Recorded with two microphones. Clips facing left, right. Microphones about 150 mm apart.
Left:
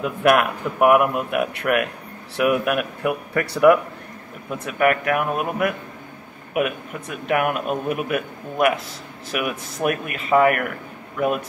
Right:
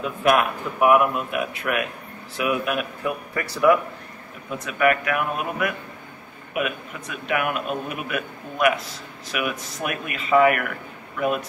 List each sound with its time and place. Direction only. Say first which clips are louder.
0.0 s speech: left 2 dB; 60° left (ahead or behind)
4.6 s a man's voice: left 2 dB; 45° left (ahead or behind)